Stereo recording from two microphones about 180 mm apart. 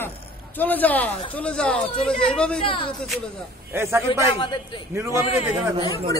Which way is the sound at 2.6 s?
30° left (ahead or behind).